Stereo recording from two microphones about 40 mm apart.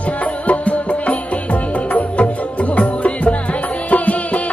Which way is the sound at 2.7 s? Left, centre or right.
Left.